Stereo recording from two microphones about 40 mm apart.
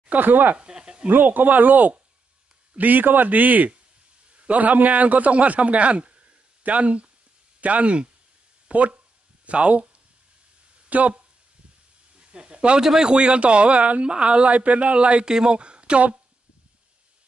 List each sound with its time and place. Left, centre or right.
0.1 s a man's voice: right
0.6 s a sound: right
1.0 s a man's voice: right
10.9 s speech: right
12.2 s a sound: right
12.8 s a man's voice: centre